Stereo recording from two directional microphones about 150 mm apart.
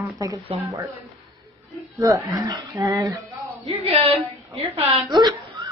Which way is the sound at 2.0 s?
20° right (ahead or behind).